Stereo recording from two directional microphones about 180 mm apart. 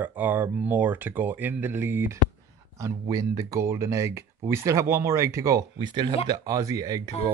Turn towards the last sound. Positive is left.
turn(degrees=-20)  # may be behind; listen again after turning